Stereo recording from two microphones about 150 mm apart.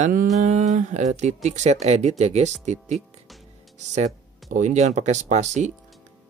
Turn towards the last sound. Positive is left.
turn(degrees=-50)  # may be behind; listen again after turning